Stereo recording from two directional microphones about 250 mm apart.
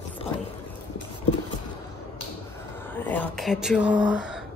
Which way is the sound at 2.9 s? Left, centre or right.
Centre.